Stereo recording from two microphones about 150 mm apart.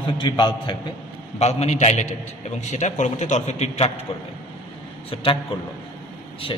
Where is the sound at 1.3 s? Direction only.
45° left (ahead or behind).